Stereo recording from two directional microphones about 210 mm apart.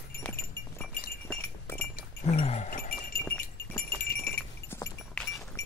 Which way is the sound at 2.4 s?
35° left (ahead or behind).